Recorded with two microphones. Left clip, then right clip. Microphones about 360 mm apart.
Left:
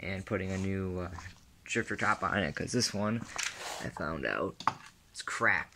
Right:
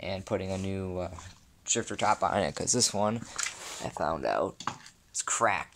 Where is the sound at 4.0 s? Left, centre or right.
Centre.